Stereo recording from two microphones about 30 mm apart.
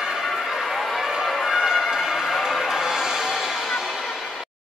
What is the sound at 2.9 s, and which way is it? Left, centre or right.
Music, right.